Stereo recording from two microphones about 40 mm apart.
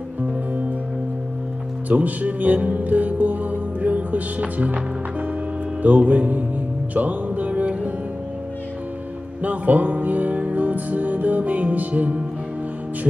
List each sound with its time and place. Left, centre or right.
1.9 s speech: right
5.8 s music: right
9.4 s music: right